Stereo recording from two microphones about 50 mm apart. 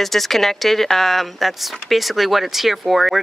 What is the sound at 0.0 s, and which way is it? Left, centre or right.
Speech, centre.